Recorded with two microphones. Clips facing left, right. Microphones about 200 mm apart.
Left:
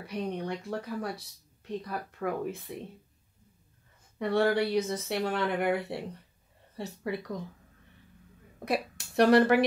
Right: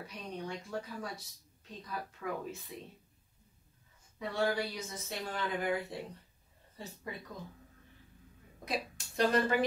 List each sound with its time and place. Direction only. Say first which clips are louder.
0.0 s speech: left 8 dB; 60° left (ahead or behind)
4.2 s speech: left 7 dB; 60° left (ahead or behind)
8.6 s speech: left 7 dB; 65° left (ahead or behind)